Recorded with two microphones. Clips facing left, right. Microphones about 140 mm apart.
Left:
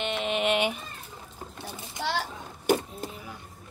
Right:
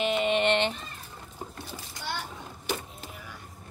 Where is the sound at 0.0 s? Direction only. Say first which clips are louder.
Right 3 dB; centre (ahead or behind).